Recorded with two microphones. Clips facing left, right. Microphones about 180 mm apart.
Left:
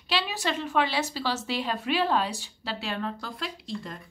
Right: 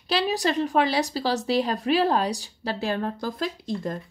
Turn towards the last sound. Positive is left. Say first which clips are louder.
# right 7 dB
turn(degrees=-45)  # may be behind; listen again after turning